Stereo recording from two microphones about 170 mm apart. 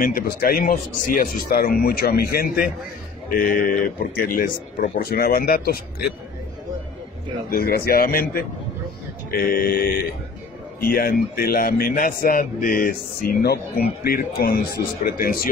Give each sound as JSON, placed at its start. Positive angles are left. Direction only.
{"t": 0.0, "sound": "speech", "side_deg": 55}
{"t": 7.4, "sound": "speech", "side_deg": 60}